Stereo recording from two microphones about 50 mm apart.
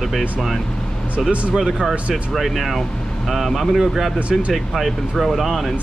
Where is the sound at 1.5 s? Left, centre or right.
Centre.